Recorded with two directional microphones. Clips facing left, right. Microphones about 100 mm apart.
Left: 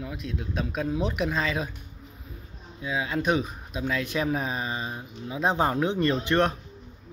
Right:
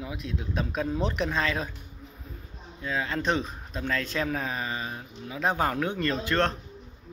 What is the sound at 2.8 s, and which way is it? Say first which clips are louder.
Speech: left 2 dB; 10° left (ahead or behind).